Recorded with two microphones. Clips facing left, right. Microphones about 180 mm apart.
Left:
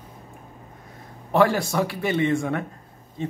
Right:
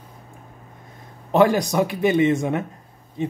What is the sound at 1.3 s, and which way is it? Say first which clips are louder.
A man's voice: right 3 dB; 20° right (ahead or behind).